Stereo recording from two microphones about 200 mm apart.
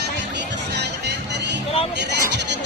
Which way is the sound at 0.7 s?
60° right (ahead or behind).